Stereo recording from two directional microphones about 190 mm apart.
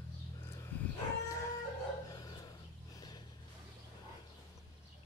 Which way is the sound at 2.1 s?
20° left (ahead or behind).